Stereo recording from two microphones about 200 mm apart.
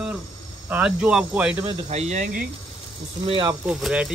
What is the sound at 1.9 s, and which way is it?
Speech, 35° right (ahead or behind).